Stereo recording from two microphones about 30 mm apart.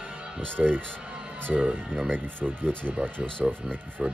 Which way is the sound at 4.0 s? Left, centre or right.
Right.